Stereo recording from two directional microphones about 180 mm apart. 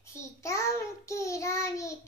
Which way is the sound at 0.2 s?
15° left (ahead or behind).